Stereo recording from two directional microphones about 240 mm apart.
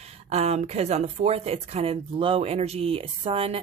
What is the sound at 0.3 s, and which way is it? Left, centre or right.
Speech, right.